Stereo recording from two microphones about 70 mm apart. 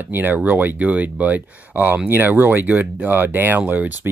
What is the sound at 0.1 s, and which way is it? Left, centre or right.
Speech, right.